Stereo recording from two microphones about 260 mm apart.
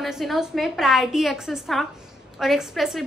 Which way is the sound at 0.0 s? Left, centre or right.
Centre.